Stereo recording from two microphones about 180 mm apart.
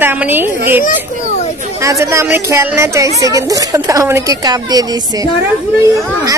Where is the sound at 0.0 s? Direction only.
10° right (ahead or behind).